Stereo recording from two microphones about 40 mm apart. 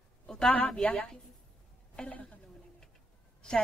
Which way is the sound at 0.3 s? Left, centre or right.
Centre.